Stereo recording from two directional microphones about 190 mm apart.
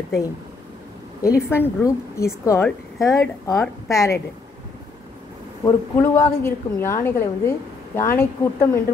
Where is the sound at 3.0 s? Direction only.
Centre (ahead or behind).